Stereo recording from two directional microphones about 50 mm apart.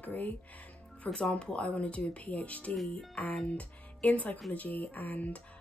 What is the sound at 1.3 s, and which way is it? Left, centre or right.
Speech, left.